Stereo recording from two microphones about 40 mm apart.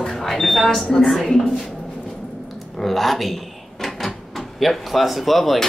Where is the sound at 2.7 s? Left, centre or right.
Centre.